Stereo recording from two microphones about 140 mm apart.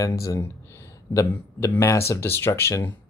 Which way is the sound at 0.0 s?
25° left (ahead or behind).